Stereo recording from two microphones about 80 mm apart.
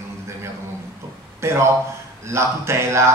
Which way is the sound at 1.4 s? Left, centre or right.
Right.